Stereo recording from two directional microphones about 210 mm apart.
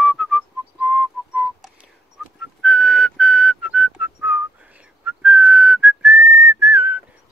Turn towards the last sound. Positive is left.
turn(degrees=-10)  # may be behind; listen again after turning